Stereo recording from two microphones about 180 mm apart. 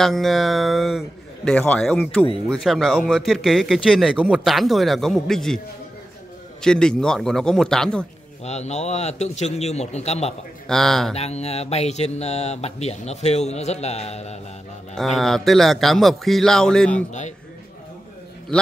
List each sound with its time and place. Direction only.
0.0 s speech: centre (ahead or behind)
6.6 s speech: 5° left (ahead or behind)
8.5 s speech: 40° left (ahead or behind)
10.7 s speech: centre (ahead or behind)
11.1 s speech: 35° left (ahead or behind)
15.0 s speech: centre (ahead or behind)